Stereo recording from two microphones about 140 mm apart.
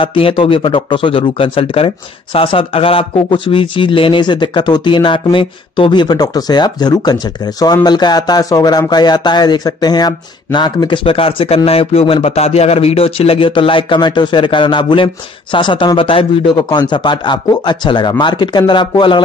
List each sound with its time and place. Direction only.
0.0 s speech: 40° left (ahead or behind)